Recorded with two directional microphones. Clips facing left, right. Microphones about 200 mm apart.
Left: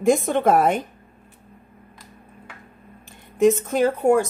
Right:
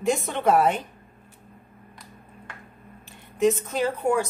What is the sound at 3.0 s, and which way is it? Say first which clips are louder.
Speech: left 4 dB; 50° left (ahead or behind).